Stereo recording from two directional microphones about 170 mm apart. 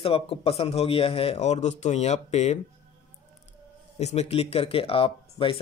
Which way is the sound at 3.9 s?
40° left (ahead or behind).